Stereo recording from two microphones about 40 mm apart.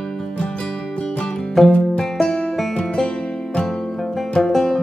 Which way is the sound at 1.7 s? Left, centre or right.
Centre.